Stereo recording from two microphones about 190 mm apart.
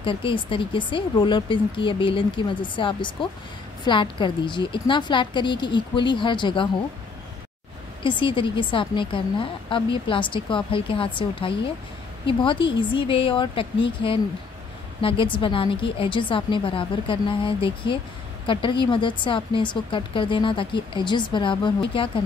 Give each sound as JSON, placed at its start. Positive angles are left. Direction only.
{"t": 0.0, "sound": "a woman's voice", "side_deg": 25}
{"t": 8.0, "sound": "a woman's voice", "side_deg": 25}